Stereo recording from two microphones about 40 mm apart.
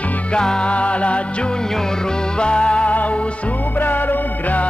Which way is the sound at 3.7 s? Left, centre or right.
Left.